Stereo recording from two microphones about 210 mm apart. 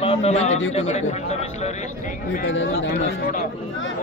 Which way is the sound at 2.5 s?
60° left (ahead or behind).